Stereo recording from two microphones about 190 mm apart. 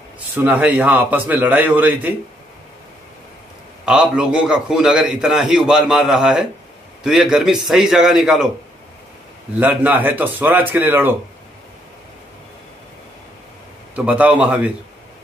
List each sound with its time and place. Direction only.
0.3 s a man's voice: 10° right (ahead or behind)
3.8 s a man's voice: 5° right (ahead or behind)
9.6 s a man's voice: 10° right (ahead or behind)
13.9 s a man's voice: 10° right (ahead or behind)